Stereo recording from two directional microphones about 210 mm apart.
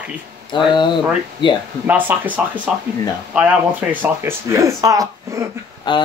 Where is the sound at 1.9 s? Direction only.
5° right (ahead or behind).